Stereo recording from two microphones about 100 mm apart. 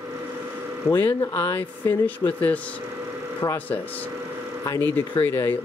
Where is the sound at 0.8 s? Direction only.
25° left (ahead or behind).